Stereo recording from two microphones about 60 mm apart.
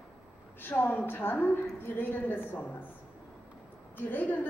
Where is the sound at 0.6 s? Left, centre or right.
Left.